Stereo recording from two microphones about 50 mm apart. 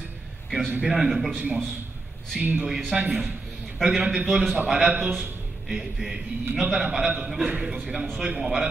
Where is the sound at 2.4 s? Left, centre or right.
Right.